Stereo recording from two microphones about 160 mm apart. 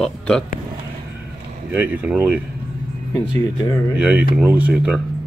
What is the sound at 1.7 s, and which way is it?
Speech, 10° right (ahead or behind).